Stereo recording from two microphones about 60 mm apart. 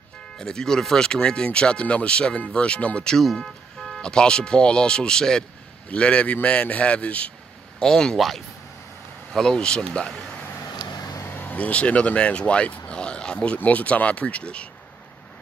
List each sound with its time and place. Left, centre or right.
0.4 s speech: centre
7.8 s speech: centre
9.3 s speech: centre
11.2 s speech: left